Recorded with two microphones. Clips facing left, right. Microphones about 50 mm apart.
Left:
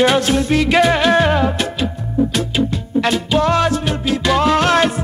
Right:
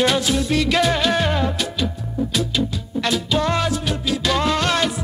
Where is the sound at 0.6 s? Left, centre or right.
Centre; by 3.1 s left.